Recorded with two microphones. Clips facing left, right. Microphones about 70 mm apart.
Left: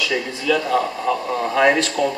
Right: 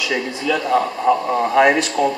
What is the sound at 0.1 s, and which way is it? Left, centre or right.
A man's voice, centre.